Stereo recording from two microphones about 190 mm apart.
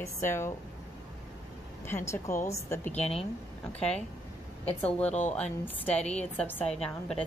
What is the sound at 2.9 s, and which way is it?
Speech, 35° left (ahead or behind).